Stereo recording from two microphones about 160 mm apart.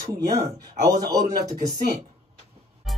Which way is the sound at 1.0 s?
25° right (ahead or behind).